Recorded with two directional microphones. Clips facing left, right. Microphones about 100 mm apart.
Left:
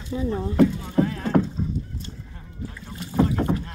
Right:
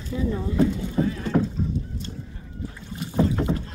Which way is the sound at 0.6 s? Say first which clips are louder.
Left 4 dB; 65° left (ahead or behind).